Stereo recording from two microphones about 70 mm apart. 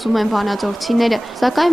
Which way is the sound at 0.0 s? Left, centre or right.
Centre.